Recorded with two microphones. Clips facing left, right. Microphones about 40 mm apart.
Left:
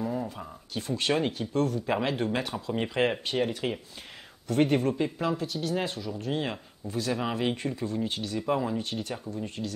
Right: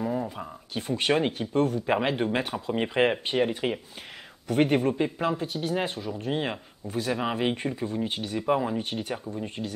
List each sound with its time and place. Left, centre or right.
0.0 s speech: centre